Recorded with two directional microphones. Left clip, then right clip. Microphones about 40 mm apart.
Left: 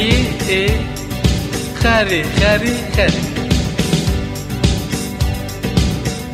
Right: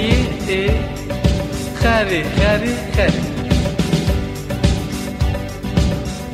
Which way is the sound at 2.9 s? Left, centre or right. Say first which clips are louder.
Left 1 dB; left.